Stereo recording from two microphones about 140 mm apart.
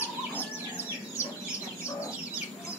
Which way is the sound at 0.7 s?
15° left (ahead or behind).